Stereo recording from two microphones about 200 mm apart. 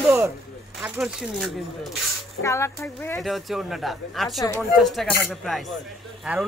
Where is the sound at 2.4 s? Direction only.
15° left (ahead or behind).